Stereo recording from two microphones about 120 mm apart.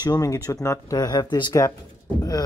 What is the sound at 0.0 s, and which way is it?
Speech, 35° left (ahead or behind).